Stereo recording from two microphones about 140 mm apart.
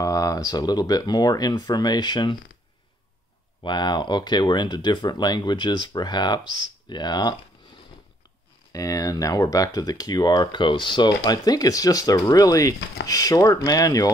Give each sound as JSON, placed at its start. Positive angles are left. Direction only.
{"t": 0.0, "sound": "speech", "side_deg": 25}
{"t": 3.6, "sound": "speech", "side_deg": 30}
{"t": 8.7, "sound": "speech", "side_deg": 25}